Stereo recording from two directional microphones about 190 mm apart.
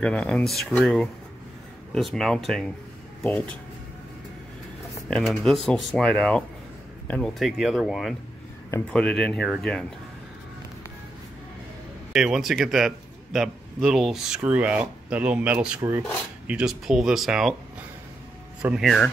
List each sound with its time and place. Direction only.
0.0 s a man's voice: 5° left (ahead or behind)
5.1 s a man's voice: 5° left (ahead or behind)
8.6 s speech: 15° left (ahead or behind)
8.9 s a man's voice: 5° left (ahead or behind)
12.1 s a man's voice: centre (ahead or behind)
18.6 s a man's voice: 5° right (ahead or behind)